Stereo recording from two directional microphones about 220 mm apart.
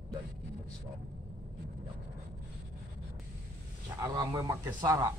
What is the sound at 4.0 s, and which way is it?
Speech, 15° right (ahead or behind).